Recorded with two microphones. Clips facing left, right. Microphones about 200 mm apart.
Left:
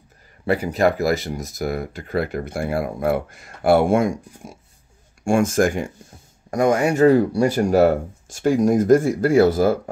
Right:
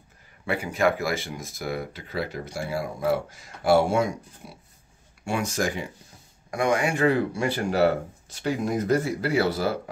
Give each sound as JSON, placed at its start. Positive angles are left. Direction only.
{"t": 0.5, "sound": "speech", "side_deg": 40}
{"t": 4.4, "sound": "speech", "side_deg": 45}